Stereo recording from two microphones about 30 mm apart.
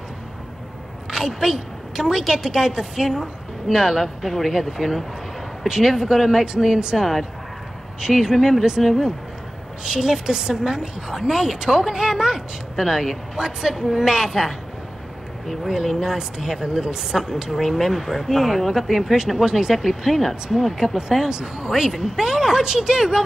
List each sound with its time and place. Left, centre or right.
1.1 s a sound: centre
2.3 s a woman's voice: centre
8.1 s a woman's voice: centre
9.8 s a woman's voice: centre
15.6 s a woman's voice: centre
21.3 s a woman's voice: right
21.6 s a woman's voice: centre